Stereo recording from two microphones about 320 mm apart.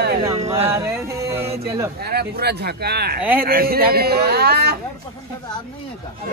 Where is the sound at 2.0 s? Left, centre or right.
Right.